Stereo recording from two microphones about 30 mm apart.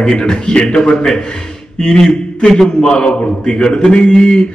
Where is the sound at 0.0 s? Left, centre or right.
Left.